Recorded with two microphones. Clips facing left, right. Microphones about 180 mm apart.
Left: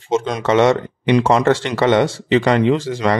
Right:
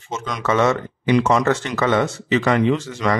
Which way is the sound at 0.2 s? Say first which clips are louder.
Left 1 dB; 30° left (ahead or behind).